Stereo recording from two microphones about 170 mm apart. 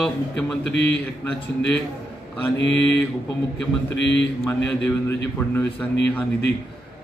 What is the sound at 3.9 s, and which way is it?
Speech, 90° left.